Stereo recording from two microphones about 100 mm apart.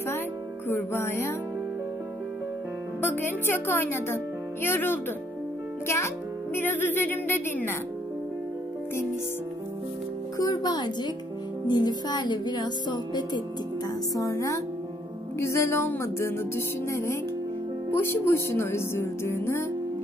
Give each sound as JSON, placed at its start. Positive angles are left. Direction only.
{"t": 0.7, "sound": "music", "side_deg": 25}
{"t": 3.0, "sound": "speech", "side_deg": 25}
{"t": 5.9, "sound": "music", "side_deg": 30}
{"t": 10.3, "sound": "a child's voice", "side_deg": 35}
{"t": 11.6, "sound": "music", "side_deg": 45}
{"t": 14.1, "sound": "a child's voice", "side_deg": 30}
{"t": 15.3, "sound": "music", "side_deg": 30}